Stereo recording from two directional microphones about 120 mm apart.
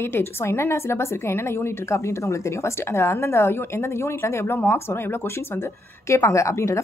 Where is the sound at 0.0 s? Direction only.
20° left (ahead or behind).